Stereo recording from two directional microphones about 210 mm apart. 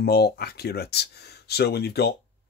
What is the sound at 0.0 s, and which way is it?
Speech, 50° left (ahead or behind).